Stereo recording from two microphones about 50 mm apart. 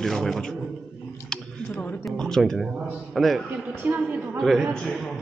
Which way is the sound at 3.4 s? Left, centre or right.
Right.